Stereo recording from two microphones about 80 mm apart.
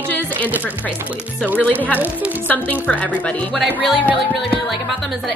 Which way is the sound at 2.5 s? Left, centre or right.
Left.